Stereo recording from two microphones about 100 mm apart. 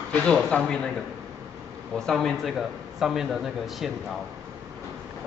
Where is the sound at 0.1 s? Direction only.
5° left (ahead or behind).